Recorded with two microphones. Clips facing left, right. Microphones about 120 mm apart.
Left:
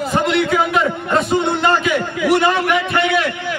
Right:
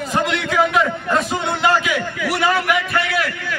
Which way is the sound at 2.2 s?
25° left (ahead or behind).